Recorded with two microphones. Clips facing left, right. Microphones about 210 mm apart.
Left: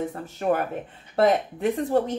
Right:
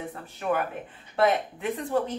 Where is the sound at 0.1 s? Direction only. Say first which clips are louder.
Left 4 dB; 40° left (ahead or behind).